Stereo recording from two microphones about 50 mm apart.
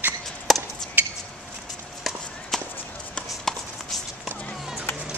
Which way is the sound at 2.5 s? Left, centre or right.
Centre.